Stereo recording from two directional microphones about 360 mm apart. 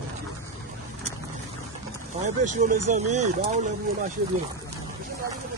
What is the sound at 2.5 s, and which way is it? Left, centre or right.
Speech, right.